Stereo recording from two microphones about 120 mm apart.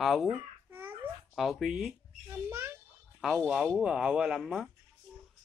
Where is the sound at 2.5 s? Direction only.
20° right (ahead or behind).